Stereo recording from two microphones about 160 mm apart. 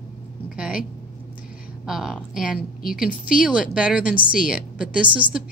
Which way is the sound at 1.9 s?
Centre (ahead or behind).